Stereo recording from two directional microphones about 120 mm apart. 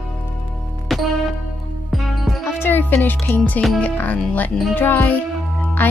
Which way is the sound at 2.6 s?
15° left (ahead or behind).